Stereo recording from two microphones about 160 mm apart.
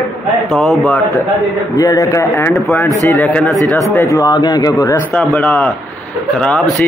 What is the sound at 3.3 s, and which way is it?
Speech, centre (ahead or behind).